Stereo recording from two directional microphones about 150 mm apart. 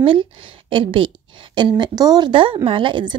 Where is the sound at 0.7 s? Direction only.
35° right (ahead or behind).